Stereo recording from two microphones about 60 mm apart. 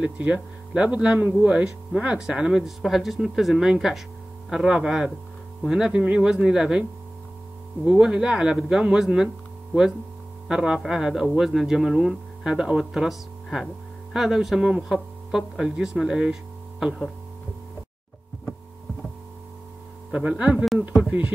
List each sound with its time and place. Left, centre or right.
0.3 s speech: centre
10.5 s speech: centre
20.1 s speech: centre
20.5 s speech: centre
21.1 s speech: right